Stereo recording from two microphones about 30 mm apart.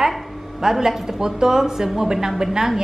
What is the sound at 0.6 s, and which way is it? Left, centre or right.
A woman's voice, centre.